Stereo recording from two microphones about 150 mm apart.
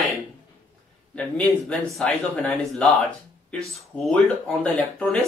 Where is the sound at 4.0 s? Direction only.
5° left (ahead or behind).